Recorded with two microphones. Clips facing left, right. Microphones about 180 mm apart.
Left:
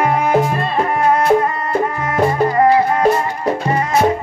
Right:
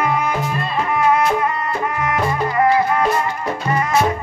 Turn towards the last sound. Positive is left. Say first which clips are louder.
# left 3 dB
turn(degrees=30)  # may be behind; listen again after turning